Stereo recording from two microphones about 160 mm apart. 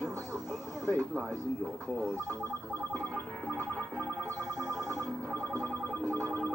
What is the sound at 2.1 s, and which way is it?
Speech, 15° right (ahead or behind).